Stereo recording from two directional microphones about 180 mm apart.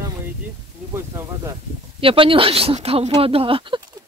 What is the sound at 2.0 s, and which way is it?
Speech, 30° right (ahead or behind).